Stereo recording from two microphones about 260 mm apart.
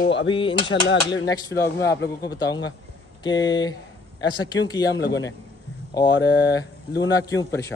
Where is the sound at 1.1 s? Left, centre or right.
Centre.